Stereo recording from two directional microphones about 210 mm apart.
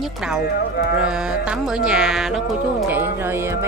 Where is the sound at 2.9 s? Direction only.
10° right (ahead or behind).